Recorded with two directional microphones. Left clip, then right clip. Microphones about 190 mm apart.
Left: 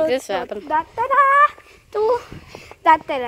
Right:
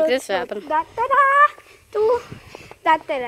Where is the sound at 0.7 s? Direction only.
35° left (ahead or behind); by 3.2 s 50° left (ahead or behind).